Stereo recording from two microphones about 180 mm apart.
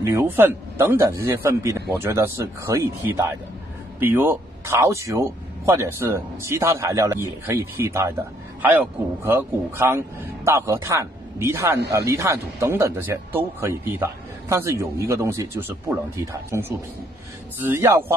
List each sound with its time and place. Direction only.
0.0 s speech: 15° right (ahead or behind)